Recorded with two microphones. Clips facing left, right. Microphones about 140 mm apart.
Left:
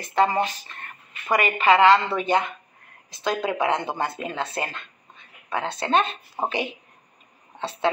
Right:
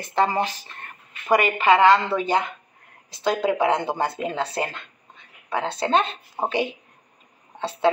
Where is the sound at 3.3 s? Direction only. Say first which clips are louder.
Right 3 dB; 25° right (ahead or behind).